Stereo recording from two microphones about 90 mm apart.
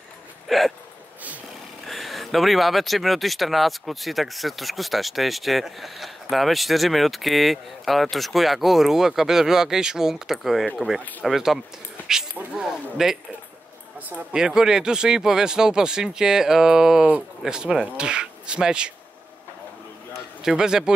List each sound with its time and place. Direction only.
0.5 s hiccup: centre (ahead or behind)
1.9 s speech: centre (ahead or behind)
13.9 s speech: 15° right (ahead or behind)
14.3 s speech: 5° right (ahead or behind)
20.4 s speech: 5° right (ahead or behind)